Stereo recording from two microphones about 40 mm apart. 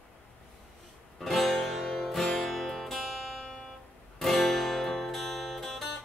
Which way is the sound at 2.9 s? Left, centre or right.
Centre.